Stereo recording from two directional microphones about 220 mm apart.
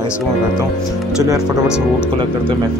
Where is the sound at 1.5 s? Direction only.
5° right (ahead or behind).